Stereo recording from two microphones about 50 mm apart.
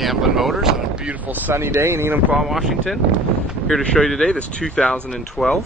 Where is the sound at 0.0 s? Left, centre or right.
Centre.